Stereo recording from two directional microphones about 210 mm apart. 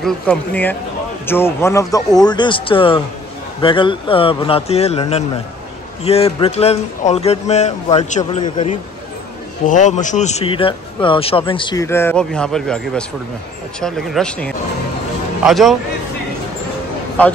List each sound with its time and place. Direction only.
0.0 s speech: 5° left (ahead or behind)